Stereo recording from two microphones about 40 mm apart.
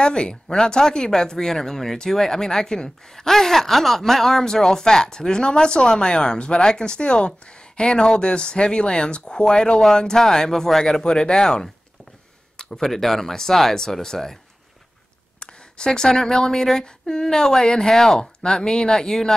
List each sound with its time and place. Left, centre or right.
0.0 s speech: left
11.3 s speech: centre
15.4 s speech: centre